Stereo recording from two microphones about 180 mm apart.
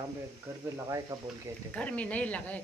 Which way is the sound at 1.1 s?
20° right (ahead or behind).